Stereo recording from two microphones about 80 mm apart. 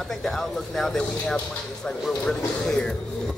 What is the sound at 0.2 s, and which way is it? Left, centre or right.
Speech, centre.